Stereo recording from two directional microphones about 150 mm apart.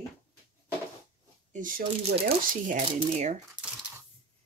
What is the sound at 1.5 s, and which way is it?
Speech, 65° right (ahead or behind).